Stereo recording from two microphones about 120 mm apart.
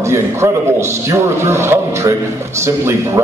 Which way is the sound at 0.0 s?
25° right (ahead or behind).